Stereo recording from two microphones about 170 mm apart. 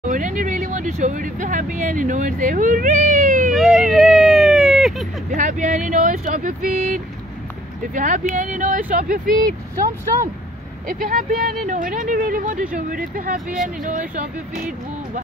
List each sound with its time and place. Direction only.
0.1 s speech: 50° right (ahead or behind)
3.5 s a sound: centre (ahead or behind)
5.3 s speech: 50° right (ahead or behind)
10.9 s speech: 55° right (ahead or behind)